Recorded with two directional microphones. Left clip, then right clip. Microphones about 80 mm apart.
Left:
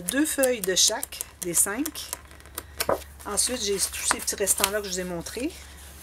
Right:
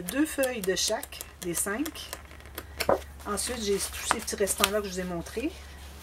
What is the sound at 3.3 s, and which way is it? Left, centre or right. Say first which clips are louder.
Speech: left 2 dB; left.